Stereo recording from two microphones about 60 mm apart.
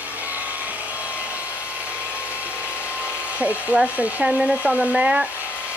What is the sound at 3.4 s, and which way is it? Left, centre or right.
Speech, right.